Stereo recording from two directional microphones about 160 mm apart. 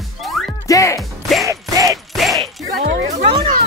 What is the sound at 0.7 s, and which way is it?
Speech, 20° left (ahead or behind).